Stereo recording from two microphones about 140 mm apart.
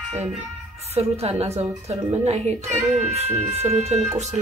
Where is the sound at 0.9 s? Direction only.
45° right (ahead or behind).